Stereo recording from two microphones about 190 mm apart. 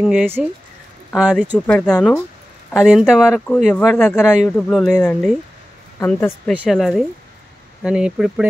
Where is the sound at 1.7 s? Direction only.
5° left (ahead or behind).